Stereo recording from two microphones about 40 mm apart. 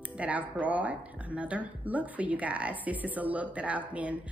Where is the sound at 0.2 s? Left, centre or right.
Right.